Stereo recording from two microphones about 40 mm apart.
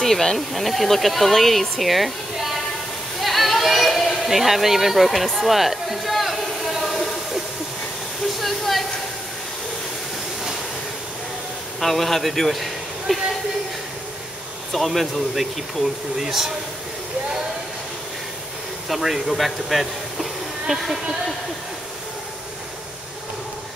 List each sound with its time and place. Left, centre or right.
0.0 s speech: centre
3.2 s a sound: centre
4.2 s speech: centre
8.4 s a sound: centre
11.8 s a man's voice: centre
14.7 s speech: centre
18.9 s speech: centre